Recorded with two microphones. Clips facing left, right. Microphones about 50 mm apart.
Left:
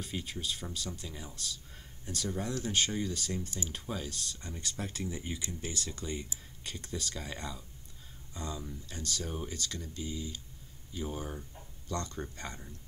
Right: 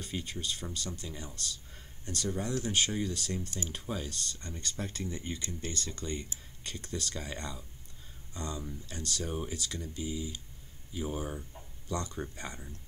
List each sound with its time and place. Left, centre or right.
0.0 s speech: centre